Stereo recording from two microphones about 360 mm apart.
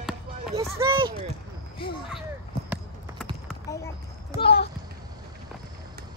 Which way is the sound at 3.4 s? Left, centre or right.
Centre.